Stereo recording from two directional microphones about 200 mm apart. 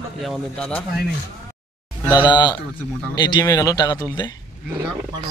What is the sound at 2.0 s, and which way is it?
Speech, 20° left (ahead or behind).